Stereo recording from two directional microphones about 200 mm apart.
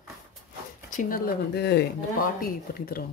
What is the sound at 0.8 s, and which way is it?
Speech, 40° left (ahead or behind).